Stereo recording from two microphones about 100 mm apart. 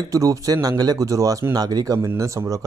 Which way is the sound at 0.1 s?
35° right (ahead or behind).